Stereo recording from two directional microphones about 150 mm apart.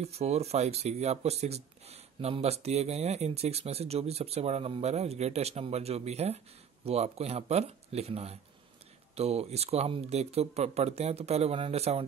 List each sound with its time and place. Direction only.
0.0 s speech: 45° right (ahead or behind)